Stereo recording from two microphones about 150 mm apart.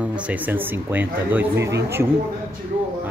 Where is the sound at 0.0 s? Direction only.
10° right (ahead or behind).